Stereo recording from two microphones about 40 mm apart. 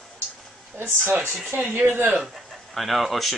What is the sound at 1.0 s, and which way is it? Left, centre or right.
Speech, right.